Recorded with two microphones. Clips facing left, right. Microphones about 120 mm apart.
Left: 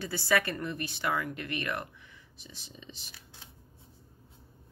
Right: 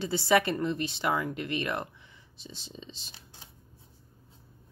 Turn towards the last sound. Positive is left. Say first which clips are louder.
# right 3 dB
turn(degrees=-30)  # may be behind; listen again after turning